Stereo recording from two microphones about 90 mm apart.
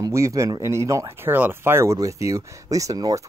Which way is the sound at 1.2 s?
25° right (ahead or behind).